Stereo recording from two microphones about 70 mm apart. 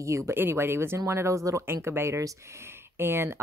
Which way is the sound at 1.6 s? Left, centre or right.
Right.